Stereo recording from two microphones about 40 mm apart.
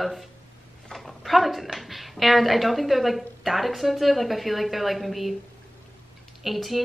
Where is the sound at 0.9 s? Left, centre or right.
Centre.